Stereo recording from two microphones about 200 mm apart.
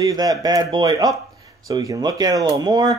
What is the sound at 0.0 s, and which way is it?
Speech, 15° right (ahead or behind).